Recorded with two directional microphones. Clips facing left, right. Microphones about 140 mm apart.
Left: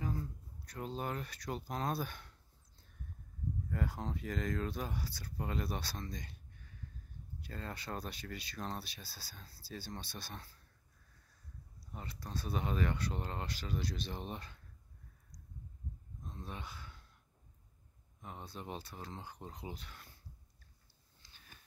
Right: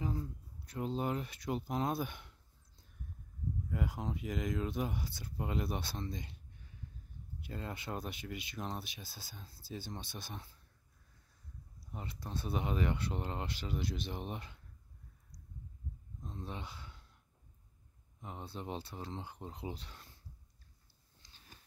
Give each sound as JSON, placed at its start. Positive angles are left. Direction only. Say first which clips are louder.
{"t": 0.0, "sound": "speech", "louder": "right 1 dB", "side_deg": -20}
{"t": 3.7, "sound": "speech", "louder": "right 1 dB", "side_deg": -15}
{"t": 7.4, "sound": "speech", "louder": "right 2 dB", "side_deg": -20}
{"t": 11.9, "sound": "speech", "louder": "right 1 dB", "side_deg": -20}
{"t": 16.3, "sound": "speech", "louder": "right 2 dB", "side_deg": -25}
{"t": 18.2, "sound": "speech", "louder": "right 2 dB", "side_deg": -25}